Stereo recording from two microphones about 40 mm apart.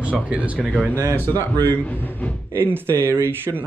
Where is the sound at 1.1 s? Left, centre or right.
Left.